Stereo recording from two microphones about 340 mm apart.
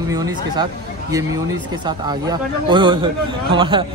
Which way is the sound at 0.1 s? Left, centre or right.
Centre.